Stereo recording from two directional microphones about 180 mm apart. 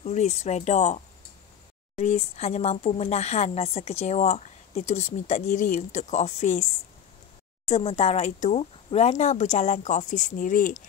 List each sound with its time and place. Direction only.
0.0 s speech: 40° left (ahead or behind)
7.6 s speech: 35° left (ahead or behind)